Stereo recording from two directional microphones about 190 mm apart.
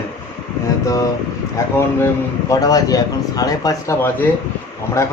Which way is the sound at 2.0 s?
20° left (ahead or behind).